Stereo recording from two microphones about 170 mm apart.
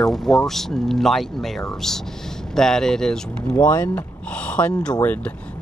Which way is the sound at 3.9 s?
5° left (ahead or behind).